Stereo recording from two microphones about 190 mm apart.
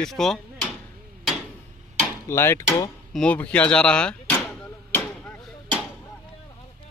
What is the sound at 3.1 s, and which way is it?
Speech, 5° left (ahead or behind).